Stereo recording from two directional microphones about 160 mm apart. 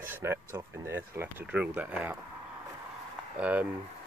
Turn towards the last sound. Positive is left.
turn(degrees=-10)  # may be behind; listen again after turning